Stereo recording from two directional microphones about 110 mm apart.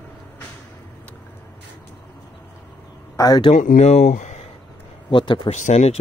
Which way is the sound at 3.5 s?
80° left.